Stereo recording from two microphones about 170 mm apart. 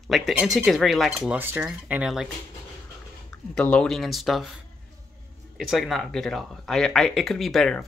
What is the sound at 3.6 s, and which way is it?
Speech, 5° left (ahead or behind).